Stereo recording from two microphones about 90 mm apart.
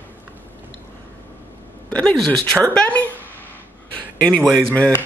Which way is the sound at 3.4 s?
20° left (ahead or behind).